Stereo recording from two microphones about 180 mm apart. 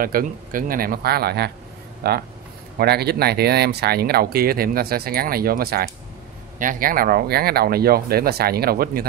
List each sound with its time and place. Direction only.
0.0 s speech: 50° right (ahead or behind)